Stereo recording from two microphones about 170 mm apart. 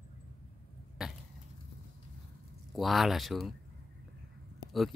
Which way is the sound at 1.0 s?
Centre (ahead or behind).